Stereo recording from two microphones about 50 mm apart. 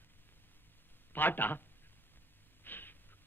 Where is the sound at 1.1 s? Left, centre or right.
Left.